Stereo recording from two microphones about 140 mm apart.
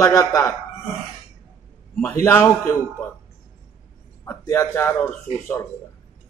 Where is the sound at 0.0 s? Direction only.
20° left (ahead or behind).